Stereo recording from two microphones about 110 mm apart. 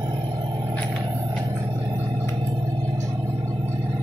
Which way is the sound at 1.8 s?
25° right (ahead or behind).